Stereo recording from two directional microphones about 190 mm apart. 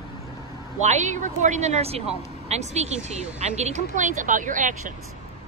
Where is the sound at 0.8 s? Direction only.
40° right (ahead or behind).